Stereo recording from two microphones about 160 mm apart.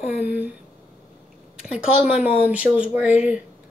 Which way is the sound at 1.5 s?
5° right (ahead or behind).